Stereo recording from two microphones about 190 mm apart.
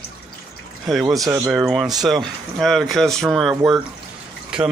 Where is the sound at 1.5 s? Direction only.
5° right (ahead or behind).